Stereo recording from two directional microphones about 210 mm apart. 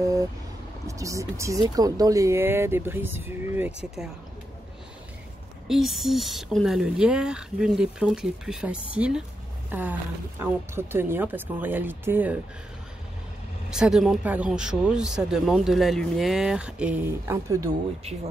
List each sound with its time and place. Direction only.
0.0 s vehicle: 15° right (ahead or behind)
0.8 s speech: 15° right (ahead or behind)
5.7 s speech: centre (ahead or behind)
13.7 s speech: 5° right (ahead or behind)